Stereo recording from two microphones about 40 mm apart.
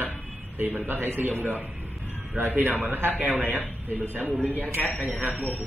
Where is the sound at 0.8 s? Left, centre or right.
Right.